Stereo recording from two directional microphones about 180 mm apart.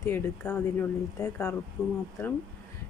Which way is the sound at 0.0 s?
15° left (ahead or behind).